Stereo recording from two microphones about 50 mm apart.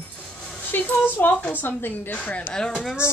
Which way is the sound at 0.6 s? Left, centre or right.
Left.